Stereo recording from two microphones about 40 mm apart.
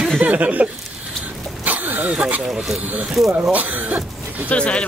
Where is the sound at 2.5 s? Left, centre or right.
Centre.